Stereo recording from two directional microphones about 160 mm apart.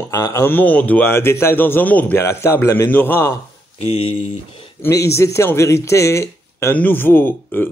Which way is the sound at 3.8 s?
35° left (ahead or behind).